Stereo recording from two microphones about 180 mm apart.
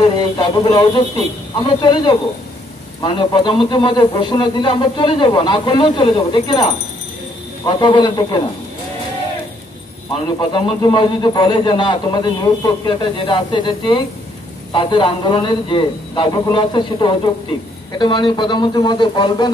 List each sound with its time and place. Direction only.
0.0 s speech: 25° left (ahead or behind)
10.2 s speech: 25° left (ahead or behind)